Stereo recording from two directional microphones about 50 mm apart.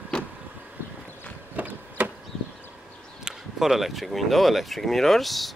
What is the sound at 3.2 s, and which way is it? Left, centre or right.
Speech, centre.